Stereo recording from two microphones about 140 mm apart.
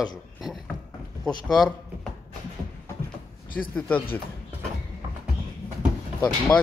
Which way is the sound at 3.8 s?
10° left (ahead or behind).